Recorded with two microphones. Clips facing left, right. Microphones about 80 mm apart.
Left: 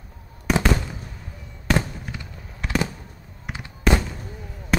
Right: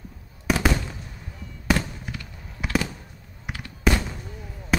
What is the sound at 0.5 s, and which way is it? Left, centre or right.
Fireworks, centre.